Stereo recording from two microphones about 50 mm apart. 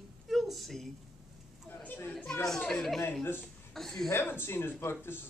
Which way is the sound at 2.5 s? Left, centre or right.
Centre.